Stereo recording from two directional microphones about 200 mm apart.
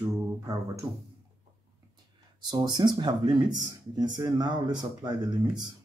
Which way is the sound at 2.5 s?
20° right (ahead or behind).